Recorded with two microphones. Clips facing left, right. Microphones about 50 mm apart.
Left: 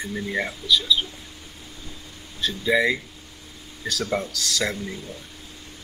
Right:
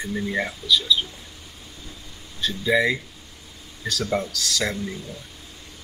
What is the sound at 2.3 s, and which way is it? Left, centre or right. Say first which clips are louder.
Speech: even; centre.